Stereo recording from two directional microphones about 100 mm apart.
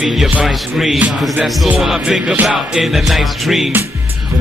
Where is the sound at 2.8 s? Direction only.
Centre (ahead or behind).